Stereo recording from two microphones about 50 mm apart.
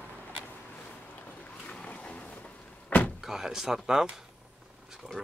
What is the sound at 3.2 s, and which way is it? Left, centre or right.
Speech, centre.